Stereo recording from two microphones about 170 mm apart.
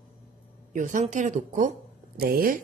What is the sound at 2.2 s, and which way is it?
Speech, 60° right (ahead or behind).